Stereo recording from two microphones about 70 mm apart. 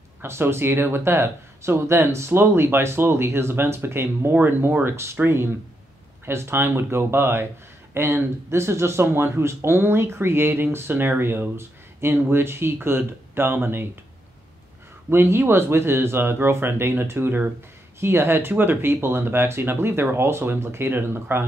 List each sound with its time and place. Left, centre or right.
0.2 s speech: right
15.0 s speech: right